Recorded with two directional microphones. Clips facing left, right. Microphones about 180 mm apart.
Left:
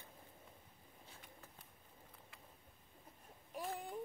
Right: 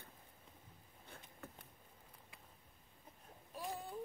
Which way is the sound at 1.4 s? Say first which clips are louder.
Right 8 dB; 60° right (ahead or behind).